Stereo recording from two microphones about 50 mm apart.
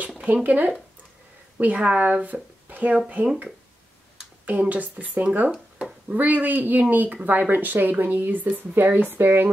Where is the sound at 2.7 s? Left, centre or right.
Right.